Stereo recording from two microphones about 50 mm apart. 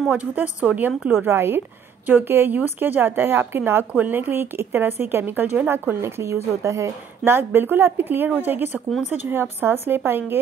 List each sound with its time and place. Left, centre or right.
0.1 s a woman's voice: right
1.1 s speech: right
7.2 s speech: right
9.3 s speech: right